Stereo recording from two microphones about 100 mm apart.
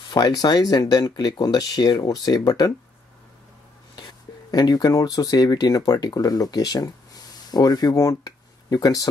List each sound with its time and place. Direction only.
0.1 s speech: 40° left (ahead or behind)
4.5 s speech: 40° left (ahead or behind)